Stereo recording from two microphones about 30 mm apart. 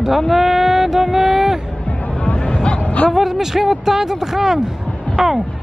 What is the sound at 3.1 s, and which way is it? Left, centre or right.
Speech, centre.